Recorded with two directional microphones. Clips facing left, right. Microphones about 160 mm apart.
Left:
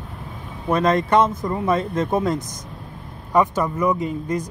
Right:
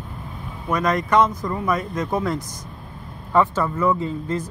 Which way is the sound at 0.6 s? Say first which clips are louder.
Left 3 dB; 25° left (ahead or behind).